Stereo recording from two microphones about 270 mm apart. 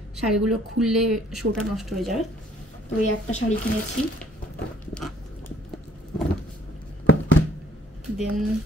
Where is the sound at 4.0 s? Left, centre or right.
Left.